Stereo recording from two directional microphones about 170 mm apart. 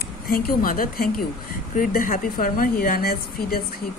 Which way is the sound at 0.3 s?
60° left (ahead or behind).